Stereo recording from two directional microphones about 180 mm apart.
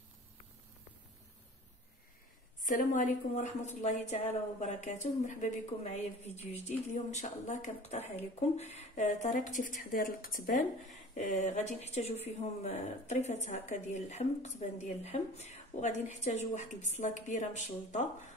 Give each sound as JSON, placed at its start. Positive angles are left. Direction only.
{"t": 2.6, "sound": "speech", "side_deg": 45}